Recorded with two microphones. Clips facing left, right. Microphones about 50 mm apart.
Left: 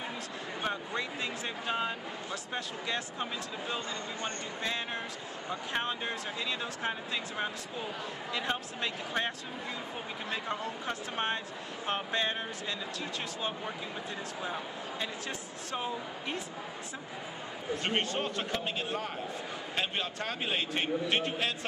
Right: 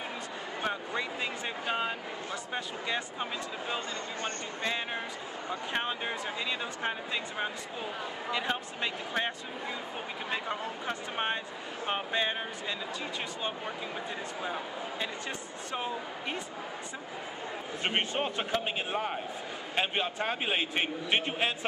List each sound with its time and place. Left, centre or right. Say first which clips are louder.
0.6 s speech: right 1 dB; centre
10.3 s speech: right 1 dB; centre
14.4 s speech: right 2 dB; centre
17.8 s a man's voice: right 2 dB; centre